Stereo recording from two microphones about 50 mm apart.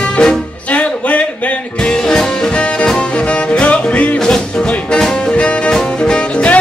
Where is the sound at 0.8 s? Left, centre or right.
Left.